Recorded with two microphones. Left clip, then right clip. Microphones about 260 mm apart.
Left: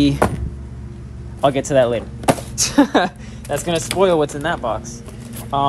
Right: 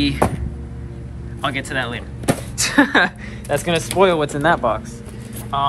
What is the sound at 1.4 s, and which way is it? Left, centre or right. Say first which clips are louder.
Speech: left 8 dB; left.